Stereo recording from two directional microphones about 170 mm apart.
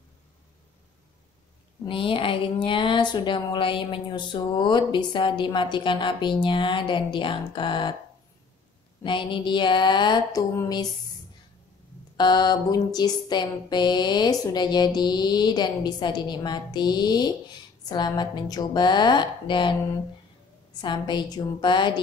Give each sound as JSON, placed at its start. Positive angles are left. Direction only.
{"t": 1.9, "sound": "a woman's voice", "side_deg": 30}
{"t": 9.0, "sound": "a woman's voice", "side_deg": 30}
{"t": 12.2, "sound": "a woman's voice", "side_deg": 25}
{"t": 20.8, "sound": "a woman's voice", "side_deg": 25}